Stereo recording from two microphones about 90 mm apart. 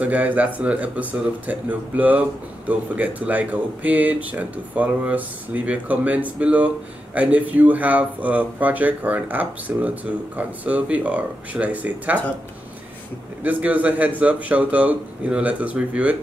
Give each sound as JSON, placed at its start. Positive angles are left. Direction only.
{"t": 0.0, "sound": "speech", "side_deg": -15}
{"t": 13.4, "sound": "speech", "side_deg": -15}